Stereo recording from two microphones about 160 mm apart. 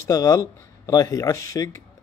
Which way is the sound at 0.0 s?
20° left (ahead or behind).